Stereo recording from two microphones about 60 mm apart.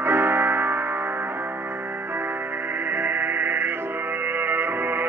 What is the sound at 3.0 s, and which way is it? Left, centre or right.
Music, right.